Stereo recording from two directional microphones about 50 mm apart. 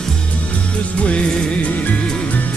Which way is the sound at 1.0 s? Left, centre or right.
Left.